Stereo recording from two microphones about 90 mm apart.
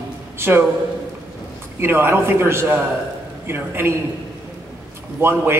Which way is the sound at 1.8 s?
25° right (ahead or behind).